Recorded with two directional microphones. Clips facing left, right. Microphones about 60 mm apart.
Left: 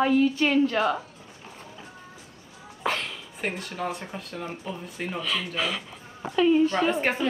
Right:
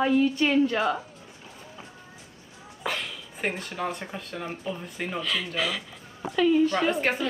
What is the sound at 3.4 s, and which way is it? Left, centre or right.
Speech, centre.